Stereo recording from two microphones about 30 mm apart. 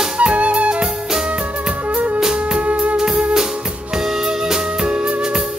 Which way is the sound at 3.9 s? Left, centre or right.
Centre.